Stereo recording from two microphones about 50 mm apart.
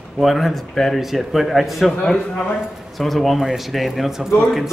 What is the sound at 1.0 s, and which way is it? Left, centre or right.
Speech, centre.